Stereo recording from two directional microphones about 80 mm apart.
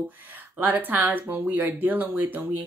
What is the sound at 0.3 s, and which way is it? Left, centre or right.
Speech, right.